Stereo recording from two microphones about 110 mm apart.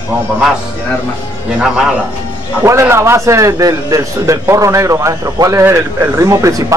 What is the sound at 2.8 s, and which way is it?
A man's voice, 25° right (ahead or behind).